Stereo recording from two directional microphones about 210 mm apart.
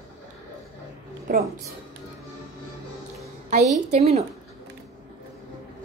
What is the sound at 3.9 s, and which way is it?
Speech, 30° right (ahead or behind).